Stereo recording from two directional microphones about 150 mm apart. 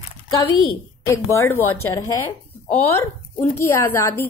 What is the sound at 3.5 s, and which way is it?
Speech, 15° left (ahead or behind).